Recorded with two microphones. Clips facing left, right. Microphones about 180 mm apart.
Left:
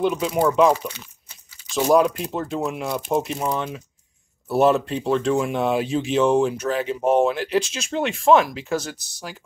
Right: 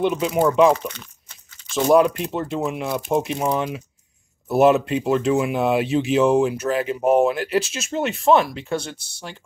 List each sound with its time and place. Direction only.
0.0 s speech: 5° right (ahead or behind)
3.5 s speech: 10° right (ahead or behind)
8.7 s speech: 30° right (ahead or behind)